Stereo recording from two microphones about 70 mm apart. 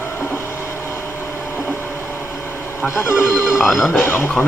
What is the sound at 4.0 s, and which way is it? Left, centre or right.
Speech, left.